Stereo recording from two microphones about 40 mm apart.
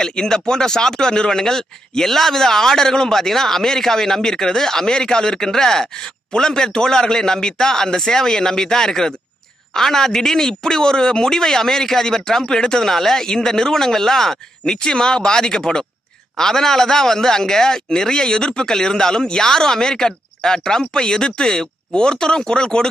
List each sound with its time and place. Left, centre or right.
0.0 s speech: centre
14.6 s speech: left